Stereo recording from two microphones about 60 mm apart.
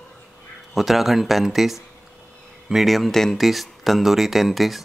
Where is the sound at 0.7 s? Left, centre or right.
Centre.